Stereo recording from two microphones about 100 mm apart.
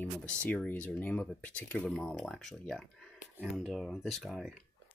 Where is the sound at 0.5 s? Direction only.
15° left (ahead or behind); by 4.5 s centre (ahead or behind).